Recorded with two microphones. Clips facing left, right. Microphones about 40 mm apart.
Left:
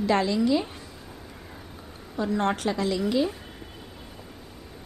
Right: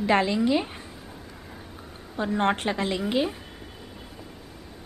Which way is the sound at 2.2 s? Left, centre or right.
Right.